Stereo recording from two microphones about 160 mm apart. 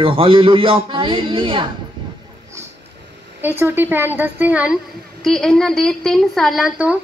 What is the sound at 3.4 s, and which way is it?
A woman's voice, 15° right (ahead or behind).